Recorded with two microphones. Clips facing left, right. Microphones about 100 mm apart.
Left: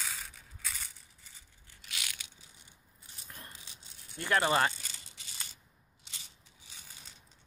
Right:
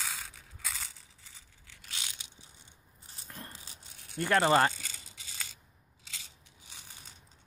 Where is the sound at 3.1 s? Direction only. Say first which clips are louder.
Right 3 dB; 35° right (ahead or behind).